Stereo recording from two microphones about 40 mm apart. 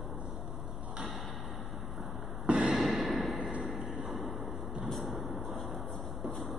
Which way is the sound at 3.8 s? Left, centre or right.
Centre.